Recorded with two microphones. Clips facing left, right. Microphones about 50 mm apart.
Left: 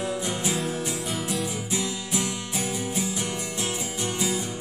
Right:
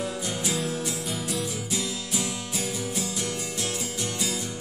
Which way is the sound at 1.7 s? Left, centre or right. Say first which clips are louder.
Left 2 dB; left.